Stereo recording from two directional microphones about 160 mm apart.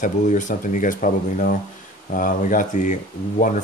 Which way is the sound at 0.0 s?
50° left (ahead or behind).